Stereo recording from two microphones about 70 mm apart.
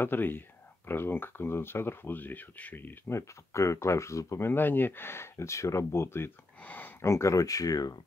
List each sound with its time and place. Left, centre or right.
0.0 s speech: left
3.1 s speech: left
4.5 s speech: left
6.6 s speech: left
7.0 s speech: left